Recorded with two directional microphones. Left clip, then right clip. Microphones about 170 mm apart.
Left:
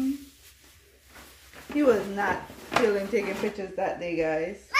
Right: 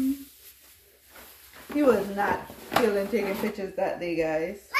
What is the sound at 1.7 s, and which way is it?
Speech, 10° left (ahead or behind).